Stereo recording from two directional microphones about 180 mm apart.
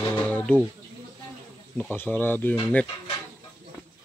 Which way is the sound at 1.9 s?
10° left (ahead or behind).